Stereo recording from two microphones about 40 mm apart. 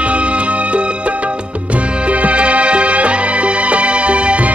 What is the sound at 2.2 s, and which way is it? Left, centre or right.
Music, right.